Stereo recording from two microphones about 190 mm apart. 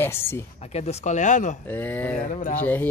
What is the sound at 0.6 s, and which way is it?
Speech, 35° left (ahead or behind).